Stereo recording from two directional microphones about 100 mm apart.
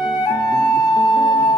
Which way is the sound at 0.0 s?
45° left (ahead or behind).